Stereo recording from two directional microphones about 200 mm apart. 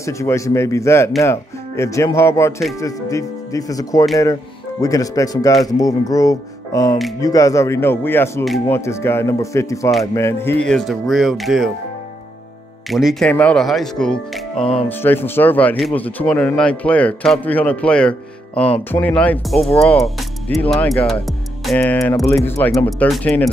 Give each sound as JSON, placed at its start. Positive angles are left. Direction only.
{"t": 0.0, "sound": "speech", "side_deg": 15}
{"t": 12.9, "sound": "speech", "side_deg": 0}